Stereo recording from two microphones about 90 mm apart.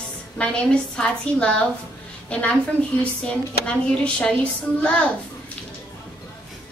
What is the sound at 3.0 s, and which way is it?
Speech, 15° left (ahead or behind).